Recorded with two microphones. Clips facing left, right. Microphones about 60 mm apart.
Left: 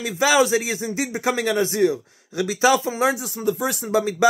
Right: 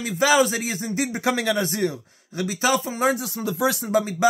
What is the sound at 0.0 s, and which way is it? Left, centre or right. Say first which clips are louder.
Speech: left 1 dB; centre.